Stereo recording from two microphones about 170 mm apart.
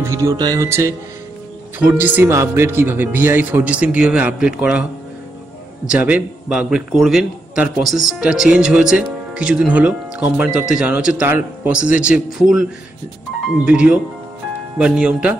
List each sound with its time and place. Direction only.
0.0 s a man's voice: 20° right (ahead or behind)
5.9 s a man's voice: 10° right (ahead or behind)
13.7 s speech: 5° right (ahead or behind)